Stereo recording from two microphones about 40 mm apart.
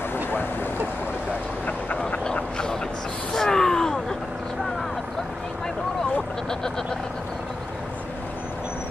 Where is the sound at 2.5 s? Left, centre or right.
Centre.